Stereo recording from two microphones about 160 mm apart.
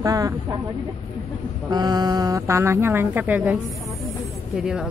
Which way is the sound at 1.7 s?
25° right (ahead or behind).